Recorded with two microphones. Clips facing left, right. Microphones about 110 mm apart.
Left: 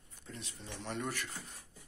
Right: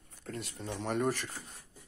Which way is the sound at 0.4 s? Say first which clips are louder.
Right 9 dB; 80° right.